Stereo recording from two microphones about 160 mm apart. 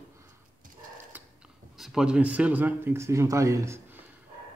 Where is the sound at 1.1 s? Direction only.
10° right (ahead or behind).